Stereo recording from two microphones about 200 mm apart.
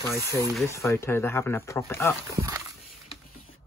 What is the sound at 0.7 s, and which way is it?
Speech, 15° left (ahead or behind).